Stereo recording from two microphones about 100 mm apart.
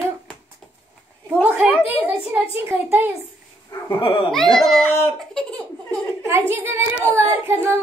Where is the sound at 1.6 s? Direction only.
15° right (ahead or behind).